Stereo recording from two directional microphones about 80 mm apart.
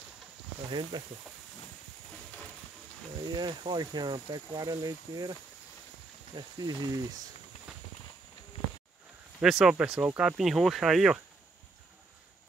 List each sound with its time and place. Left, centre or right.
0.7 s speech: right
3.3 s speech: right
9.4 s speech: centre